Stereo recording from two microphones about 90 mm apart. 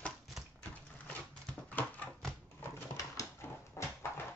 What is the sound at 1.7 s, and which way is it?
Dog, 15° left (ahead or behind).